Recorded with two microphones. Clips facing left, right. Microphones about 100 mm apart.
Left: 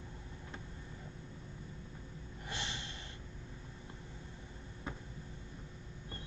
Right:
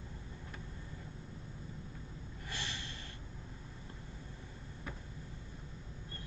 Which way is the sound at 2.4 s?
20° left (ahead or behind).